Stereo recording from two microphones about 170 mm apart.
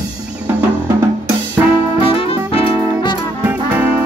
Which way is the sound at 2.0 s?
35° left (ahead or behind).